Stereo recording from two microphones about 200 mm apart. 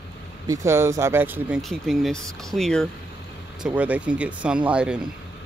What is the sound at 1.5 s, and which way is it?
Speech, centre (ahead or behind).